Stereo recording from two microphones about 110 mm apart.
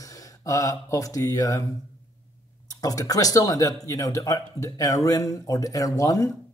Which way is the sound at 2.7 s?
35° left (ahead or behind).